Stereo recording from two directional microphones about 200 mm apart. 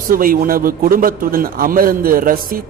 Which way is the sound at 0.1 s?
45° right (ahead or behind).